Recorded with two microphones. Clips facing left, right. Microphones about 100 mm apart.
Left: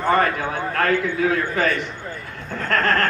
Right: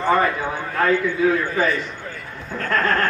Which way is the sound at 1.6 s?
70° left (ahead or behind).